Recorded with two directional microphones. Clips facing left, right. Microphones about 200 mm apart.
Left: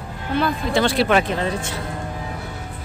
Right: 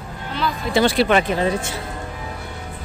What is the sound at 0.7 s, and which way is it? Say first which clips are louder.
Speech: right 2 dB; 5° right (ahead or behind).